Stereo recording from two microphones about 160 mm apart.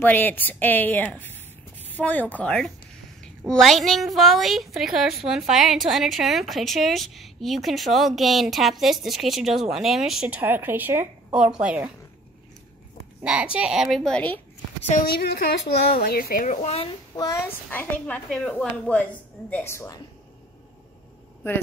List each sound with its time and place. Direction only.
0.0 s a woman's voice: 10° left (ahead or behind); by 11.9 s 5° right (ahead or behind)
13.2 s a woman's voice: 5° right (ahead or behind); by 14.4 s 10° left (ahead or behind)
14.9 s a woman's voice: 65° left (ahead or behind); by 15.4 s 80° left
16.1 s speech: 70° left (ahead or behind)
16.6 s a child's voice: 40° left (ahead or behind)
17.1 s speech: 25° left (ahead or behind)
17.6 s a woman's voice: 10° left (ahead or behind)